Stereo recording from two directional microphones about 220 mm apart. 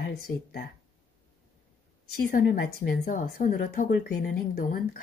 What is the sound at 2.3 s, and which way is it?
Speech, 40° left (ahead or behind).